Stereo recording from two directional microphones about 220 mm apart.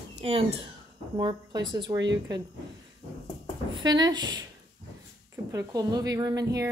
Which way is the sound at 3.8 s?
20° right (ahead or behind).